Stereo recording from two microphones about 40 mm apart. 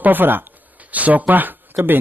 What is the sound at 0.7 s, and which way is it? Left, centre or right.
Speech, right.